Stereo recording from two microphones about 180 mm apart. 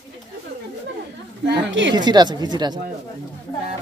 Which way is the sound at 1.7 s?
90° right.